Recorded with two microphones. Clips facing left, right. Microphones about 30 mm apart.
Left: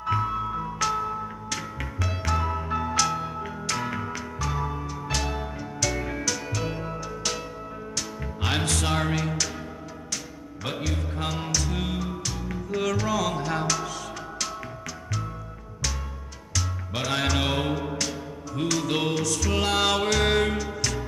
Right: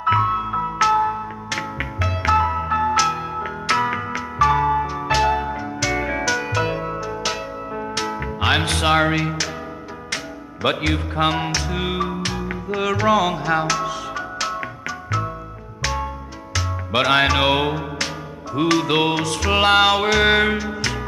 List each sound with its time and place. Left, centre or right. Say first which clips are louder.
0.0 s music: right 8 dB; right
7.7 s music: right 12 dB; right
10.1 s music: right 9 dB; right
11.1 s music: right 9 dB; right
16.9 s music: right 10 dB; right
19.9 s music: right 7 dB; right